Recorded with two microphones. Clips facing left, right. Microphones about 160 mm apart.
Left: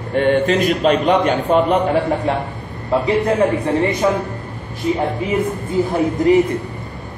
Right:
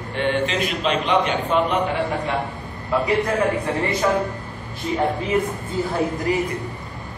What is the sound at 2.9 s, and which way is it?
Speech, 25° left (ahead or behind).